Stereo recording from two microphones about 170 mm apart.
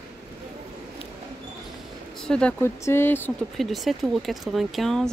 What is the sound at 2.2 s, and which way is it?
Speech, 5° left (ahead or behind).